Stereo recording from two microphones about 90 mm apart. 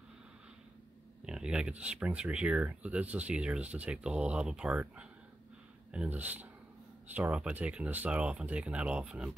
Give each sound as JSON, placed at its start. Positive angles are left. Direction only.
{"t": 1.2, "sound": "speech", "side_deg": -10}